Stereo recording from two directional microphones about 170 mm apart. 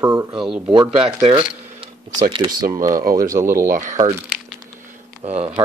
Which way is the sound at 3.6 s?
50° right (ahead or behind).